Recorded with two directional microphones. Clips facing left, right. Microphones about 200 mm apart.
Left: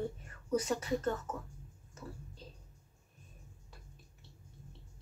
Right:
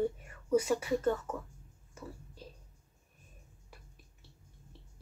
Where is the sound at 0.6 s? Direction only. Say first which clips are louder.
Right 4 dB; 10° right (ahead or behind).